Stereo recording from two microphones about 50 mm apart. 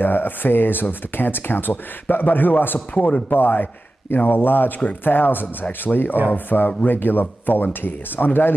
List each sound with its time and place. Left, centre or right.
0.0 s speech: left
3.0 s speech: left
3.3 s a man's voice: left